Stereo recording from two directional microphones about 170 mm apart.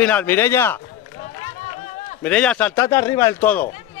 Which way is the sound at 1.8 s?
45° left (ahead or behind).